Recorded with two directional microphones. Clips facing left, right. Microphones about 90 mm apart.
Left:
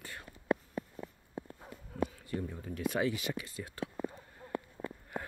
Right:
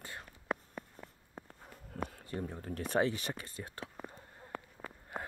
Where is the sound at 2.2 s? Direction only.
40° right (ahead or behind).